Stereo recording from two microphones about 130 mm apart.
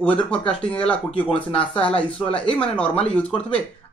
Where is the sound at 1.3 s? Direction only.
45° left (ahead or behind).